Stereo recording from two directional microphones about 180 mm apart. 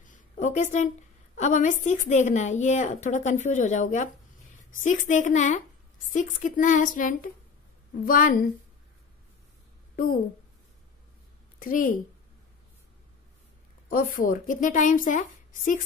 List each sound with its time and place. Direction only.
0.0 s a sound: 45° left (ahead or behind)
1.3 s a woman's voice: 45° left (ahead or behind)
11.6 s a woman's voice: 50° left (ahead or behind)
13.8 s a woman's voice: 50° left (ahead or behind)